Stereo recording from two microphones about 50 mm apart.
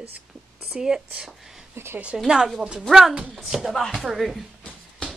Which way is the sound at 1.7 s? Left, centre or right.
Right.